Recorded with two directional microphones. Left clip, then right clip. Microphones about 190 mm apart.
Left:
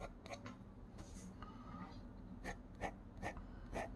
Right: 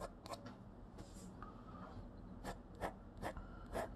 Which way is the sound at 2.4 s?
15° right (ahead or behind).